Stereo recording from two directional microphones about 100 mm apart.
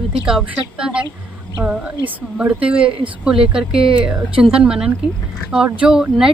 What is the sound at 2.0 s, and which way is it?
Speech, 15° right (ahead or behind).